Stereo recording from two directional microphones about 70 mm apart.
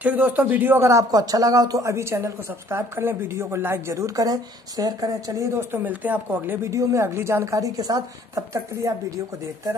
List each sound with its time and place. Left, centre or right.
0.0 s speech: right
0.7 s speech: right
1.1 s a woman's voice: right
4.2 s speech: right
5.5 s speech: right
6.6 s speech: right
7.4 s speech: right